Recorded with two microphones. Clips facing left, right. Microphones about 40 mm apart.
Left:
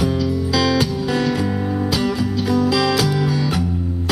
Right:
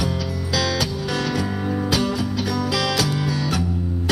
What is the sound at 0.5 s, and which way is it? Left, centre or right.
Music, left.